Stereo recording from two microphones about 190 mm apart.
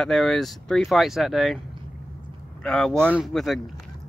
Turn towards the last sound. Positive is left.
turn(degrees=0)  # may be behind; listen again after turning